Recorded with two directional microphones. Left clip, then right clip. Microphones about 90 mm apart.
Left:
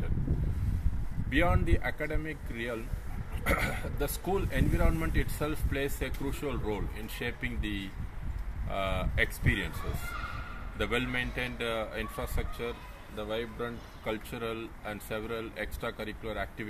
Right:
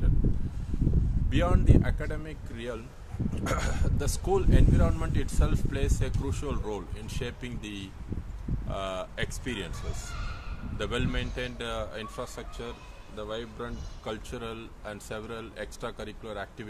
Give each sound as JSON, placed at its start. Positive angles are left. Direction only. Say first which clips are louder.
{"t": 1.3, "sound": "speech", "louder": "right 1 dB", "side_deg": -40}
{"t": 10.8, "sound": "speech", "louder": "left 1 dB", "side_deg": -35}